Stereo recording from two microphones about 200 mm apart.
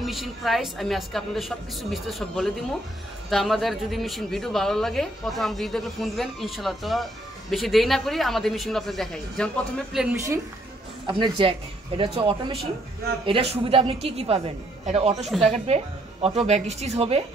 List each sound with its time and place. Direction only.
0.0 s speech: centre (ahead or behind)
11.1 s a woman's voice: 25° right (ahead or behind)
15.2 s speech: centre (ahead or behind)
15.6 s a woman's voice: 30° right (ahead or behind)